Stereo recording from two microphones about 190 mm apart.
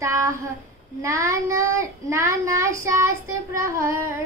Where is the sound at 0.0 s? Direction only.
15° right (ahead or behind).